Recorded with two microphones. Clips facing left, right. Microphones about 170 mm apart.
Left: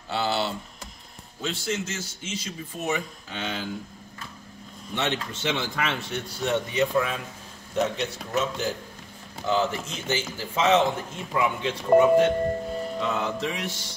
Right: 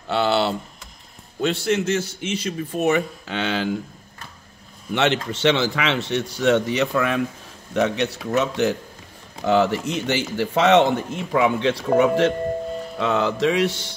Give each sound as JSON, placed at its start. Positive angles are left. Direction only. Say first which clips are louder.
{"t": 0.1, "sound": "a man's voice", "louder": "right 7 dB", "side_deg": -65}
{"t": 4.9, "sound": "a man's voice", "louder": "right 8 dB", "side_deg": -80}